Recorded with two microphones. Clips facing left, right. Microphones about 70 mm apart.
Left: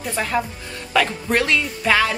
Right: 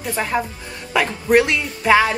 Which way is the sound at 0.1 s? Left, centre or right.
Centre.